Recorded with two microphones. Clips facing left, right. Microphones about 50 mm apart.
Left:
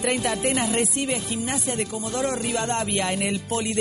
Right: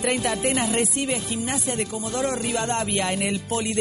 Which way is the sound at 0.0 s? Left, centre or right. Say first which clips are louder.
Even; right.